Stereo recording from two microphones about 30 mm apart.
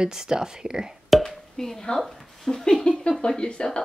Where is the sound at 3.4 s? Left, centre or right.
Left.